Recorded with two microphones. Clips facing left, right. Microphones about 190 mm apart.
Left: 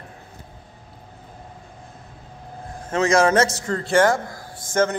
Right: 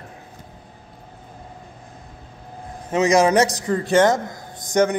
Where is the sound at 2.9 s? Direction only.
15° right (ahead or behind).